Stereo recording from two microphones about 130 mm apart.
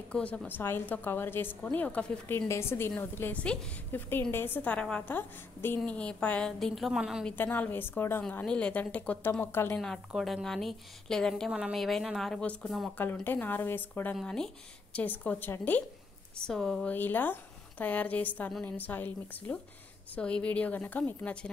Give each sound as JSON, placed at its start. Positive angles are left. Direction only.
{"t": 0.1, "sound": "a woman's voice", "side_deg": 10}
{"t": 2.3, "sound": "a woman's voice", "side_deg": 20}
{"t": 7.2, "sound": "a woman's voice", "side_deg": 15}
{"t": 9.8, "sound": "a woman's voice", "side_deg": 0}
{"t": 12.9, "sound": "a woman's voice", "side_deg": 15}
{"t": 14.1, "sound": "a woman's voice", "side_deg": 5}